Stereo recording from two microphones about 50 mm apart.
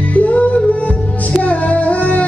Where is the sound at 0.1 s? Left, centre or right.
Left.